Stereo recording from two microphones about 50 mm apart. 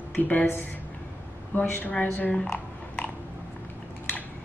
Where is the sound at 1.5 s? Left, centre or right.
Left.